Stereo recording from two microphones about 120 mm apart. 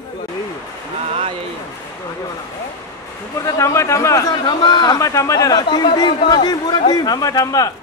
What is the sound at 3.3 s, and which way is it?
A man's voice, 25° left (ahead or behind).